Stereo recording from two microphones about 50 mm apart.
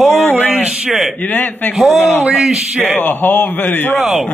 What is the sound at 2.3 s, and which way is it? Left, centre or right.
Speech, centre.